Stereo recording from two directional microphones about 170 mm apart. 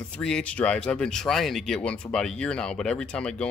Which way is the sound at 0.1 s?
5° left (ahead or behind).